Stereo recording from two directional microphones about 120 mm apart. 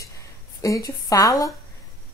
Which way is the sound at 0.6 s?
30° left (ahead or behind).